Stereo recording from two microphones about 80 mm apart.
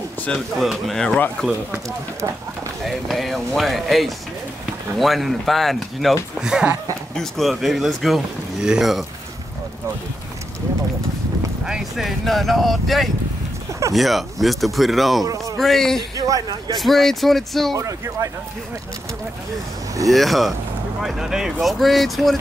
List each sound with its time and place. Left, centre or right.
0.6 s speech: centre
2.8 s speech: centre
6.3 s speech: centre
7.2 s speech: centre
11.6 s speech: centre
12.3 s speech: centre
16.2 s speech: right
16.7 s speech: centre
17.7 s speech: right
20.1 s speech: centre